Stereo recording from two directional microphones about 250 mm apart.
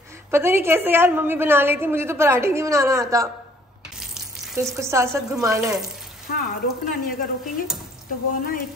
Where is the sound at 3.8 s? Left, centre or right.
Centre.